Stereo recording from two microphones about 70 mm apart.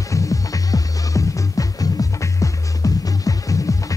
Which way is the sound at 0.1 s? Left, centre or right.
Left.